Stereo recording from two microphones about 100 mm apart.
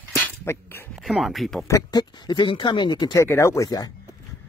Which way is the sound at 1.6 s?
35° left (ahead or behind).